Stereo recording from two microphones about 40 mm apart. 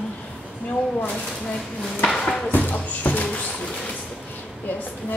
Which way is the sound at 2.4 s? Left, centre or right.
Left.